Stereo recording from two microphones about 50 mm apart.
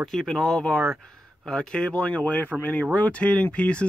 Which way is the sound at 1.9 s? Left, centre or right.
Left.